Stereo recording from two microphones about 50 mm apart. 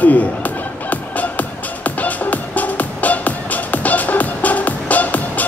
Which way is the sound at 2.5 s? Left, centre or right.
Left.